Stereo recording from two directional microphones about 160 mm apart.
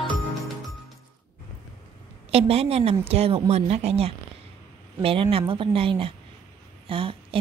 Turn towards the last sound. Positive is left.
turn(degrees=-35)  # may be behind; listen again after turning